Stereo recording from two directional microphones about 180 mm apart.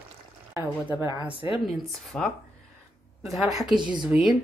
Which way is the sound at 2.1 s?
5° left (ahead or behind).